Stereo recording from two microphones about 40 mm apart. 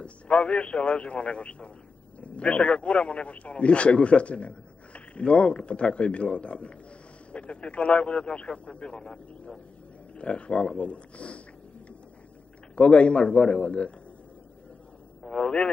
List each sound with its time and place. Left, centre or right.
0.0 s a man's voice: left
12.7 s a man's voice: left
15.2 s a man's voice: left